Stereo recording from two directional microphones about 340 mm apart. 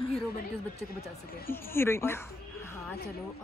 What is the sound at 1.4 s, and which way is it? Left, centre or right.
Speech, centre.